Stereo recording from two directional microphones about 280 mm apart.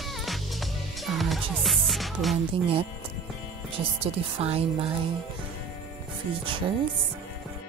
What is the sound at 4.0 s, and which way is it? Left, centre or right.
Speech, right.